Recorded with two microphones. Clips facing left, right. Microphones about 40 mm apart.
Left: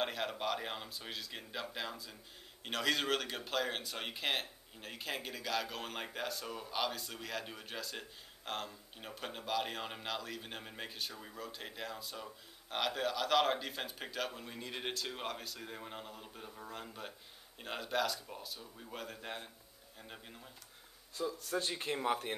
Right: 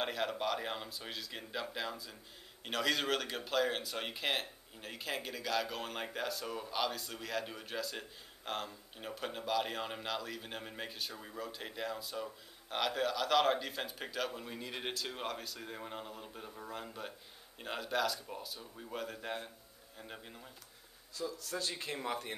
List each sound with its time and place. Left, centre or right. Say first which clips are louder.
0.0 s speech: right 1 dB; centre
21.1 s speech: left 3 dB; left